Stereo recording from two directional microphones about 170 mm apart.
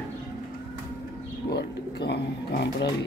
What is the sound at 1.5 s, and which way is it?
Speech, 75° left (ahead or behind).